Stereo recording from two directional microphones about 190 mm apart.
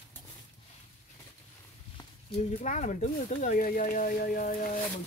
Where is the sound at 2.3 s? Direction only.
40° left (ahead or behind).